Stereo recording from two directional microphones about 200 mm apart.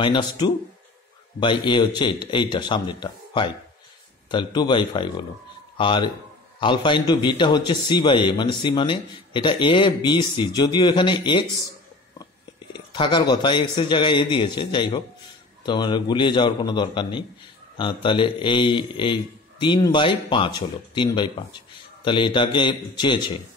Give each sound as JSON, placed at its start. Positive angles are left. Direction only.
{"t": 0.0, "sound": "a man's voice", "side_deg": 20}
{"t": 12.7, "sound": "a man's voice", "side_deg": 25}